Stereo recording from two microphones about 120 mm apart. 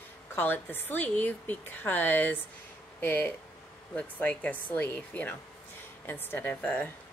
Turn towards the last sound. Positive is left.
turn(degrees=10)  # may be behind; listen again after turning